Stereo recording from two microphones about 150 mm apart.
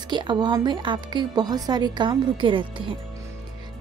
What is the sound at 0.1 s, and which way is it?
A woman's voice, 30° right (ahead or behind).